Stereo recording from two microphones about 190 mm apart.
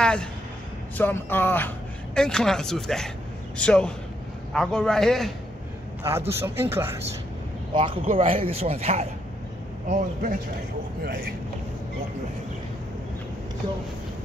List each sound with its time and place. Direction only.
0.0 s a sound: 5° left (ahead or behind)
0.9 s speech: 10° left (ahead or behind)
6.0 s speech: 15° right (ahead or behind)
7.7 s a man's voice: 25° right (ahead or behind)
11.1 s speech: 55° right (ahead or behind)